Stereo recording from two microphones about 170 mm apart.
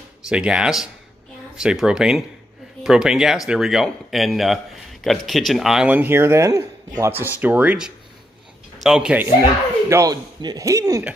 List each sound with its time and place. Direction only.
0.3 s speech: 5° right (ahead or behind)
9.8 s speech: 20° right (ahead or behind)